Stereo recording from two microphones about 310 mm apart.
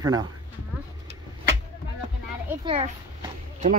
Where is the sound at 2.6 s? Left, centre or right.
Centre.